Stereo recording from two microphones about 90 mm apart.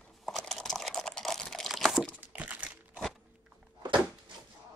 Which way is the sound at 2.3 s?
15° right (ahead or behind).